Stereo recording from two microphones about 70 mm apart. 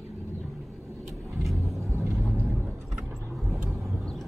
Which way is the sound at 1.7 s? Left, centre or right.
Right.